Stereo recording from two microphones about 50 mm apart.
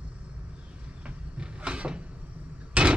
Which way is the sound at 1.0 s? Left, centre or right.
Right.